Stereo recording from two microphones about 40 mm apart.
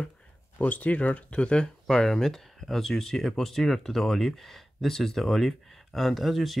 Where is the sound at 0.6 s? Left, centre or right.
Left.